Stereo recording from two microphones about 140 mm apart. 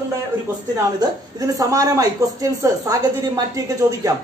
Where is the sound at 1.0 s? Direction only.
25° right (ahead or behind).